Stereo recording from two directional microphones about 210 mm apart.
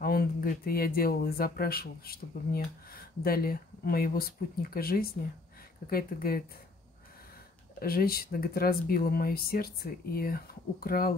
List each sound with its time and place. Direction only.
0.0 s speech: 45° left (ahead or behind)
7.8 s speech: 45° left (ahead or behind)